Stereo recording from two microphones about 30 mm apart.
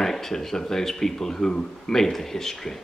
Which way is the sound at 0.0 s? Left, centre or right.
Centre.